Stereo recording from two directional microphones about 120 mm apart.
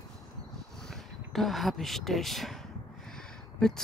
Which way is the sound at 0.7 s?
5° left (ahead or behind).